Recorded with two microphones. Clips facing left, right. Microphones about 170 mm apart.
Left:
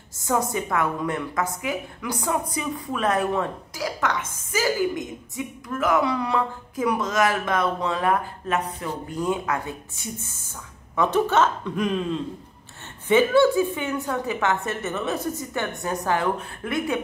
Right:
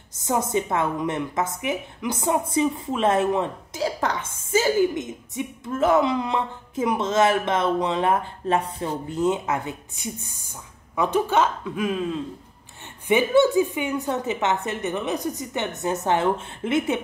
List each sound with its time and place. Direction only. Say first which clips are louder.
0.2 s a woman's voice: right 1 dB; 20° right (ahead or behind); by 12.2 s 5° right (ahead or behind)
13.1 s a woman's voice: even; 15° right (ahead or behind)